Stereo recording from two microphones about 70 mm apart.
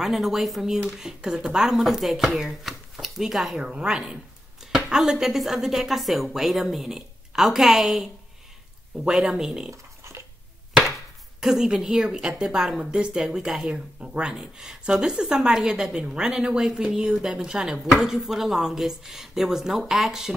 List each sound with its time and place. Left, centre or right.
0.0 s a woman's voice: centre
9.7 s a sound: right
11.4 s a woman's voice: centre